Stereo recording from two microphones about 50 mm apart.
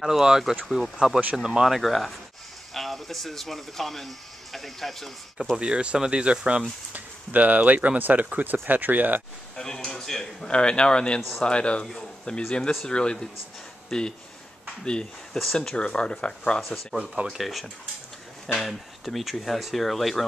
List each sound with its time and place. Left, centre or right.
0.0 s speech: centre
0.7 s speech: centre
0.9 s speech: centre
1.7 s speech: centre
5.6 s speech: right
6.9 s speech: right
9.6 s a man's voice: centre
11.1 s speech: centre
11.4 s a man's voice: left
11.9 s a man's voice: centre
15.3 s speech: centre
15.7 s speech: centre
17.3 s speech: centre